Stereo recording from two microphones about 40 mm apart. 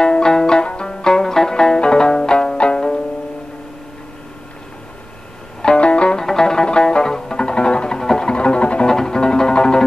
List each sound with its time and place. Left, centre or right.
0.0 s music: centre
5.8 s music: left
6.1 s music: centre
8.0 s music: centre
8.3 s music: left
8.8 s music: centre